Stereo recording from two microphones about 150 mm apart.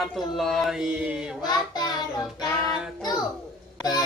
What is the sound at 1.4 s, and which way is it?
Child singing, 25° left (ahead or behind).